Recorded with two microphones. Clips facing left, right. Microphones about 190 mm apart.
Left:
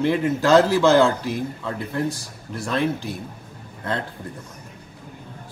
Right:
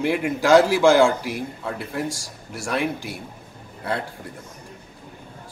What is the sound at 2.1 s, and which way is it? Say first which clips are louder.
Speech: left 2 dB; 90° right.